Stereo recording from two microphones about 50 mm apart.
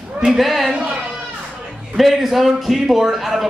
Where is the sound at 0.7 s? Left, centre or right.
Right.